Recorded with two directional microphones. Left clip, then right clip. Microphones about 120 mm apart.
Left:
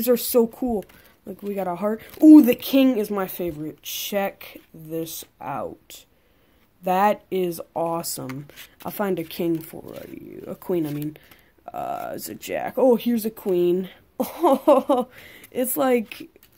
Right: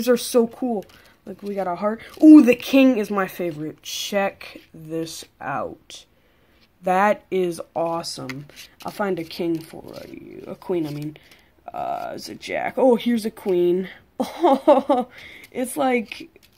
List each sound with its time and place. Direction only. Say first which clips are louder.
0.0 s speech: right 1 dB; 10° left (ahead or behind)
1.4 s speech: right 2 dB; 45° left (ahead or behind)
2.1 s speech: right 1 dB; centre (ahead or behind)
8.5 s speech: right 1 dB; 40° left (ahead or behind)
10.6 s speech: even; 60° left (ahead or behind)
12.5 s speech: right 1 dB; 15° left (ahead or behind)
15.1 s a sound: left 2 dB; 40° left (ahead or behind)
15.6 s speech: even; 50° left (ahead or behind)